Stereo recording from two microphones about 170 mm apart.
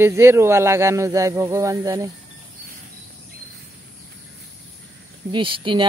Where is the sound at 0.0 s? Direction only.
15° right (ahead or behind).